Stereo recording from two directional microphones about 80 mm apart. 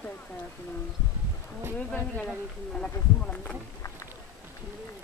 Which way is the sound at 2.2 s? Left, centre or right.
Centre.